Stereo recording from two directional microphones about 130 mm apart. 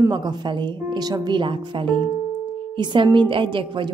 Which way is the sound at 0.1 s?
35° right (ahead or behind).